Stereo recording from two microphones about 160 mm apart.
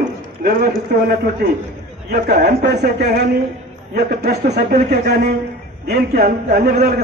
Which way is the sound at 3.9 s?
75° right (ahead or behind).